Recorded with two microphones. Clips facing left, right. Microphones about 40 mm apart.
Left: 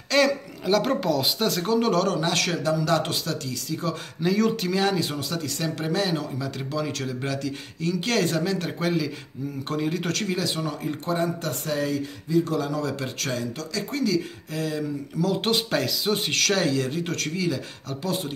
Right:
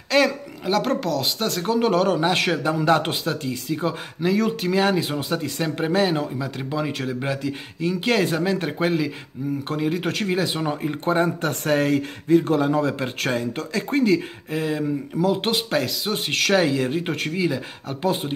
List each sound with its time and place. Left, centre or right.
0.1 s speech: centre; by 3.9 s right
4.2 s speech: centre
9.7 s speech: centre; by 18.3 s right